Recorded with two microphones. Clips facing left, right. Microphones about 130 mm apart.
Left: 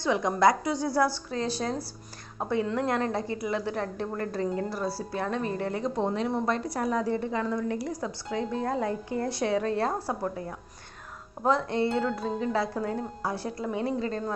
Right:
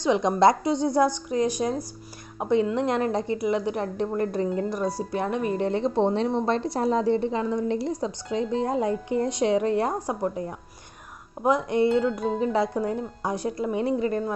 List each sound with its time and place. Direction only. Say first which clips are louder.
0.0 s a woman's voice: right 4 dB; 20° right (ahead or behind)